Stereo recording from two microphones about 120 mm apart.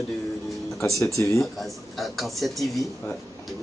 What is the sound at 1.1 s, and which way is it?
Speech, 25° left (ahead or behind).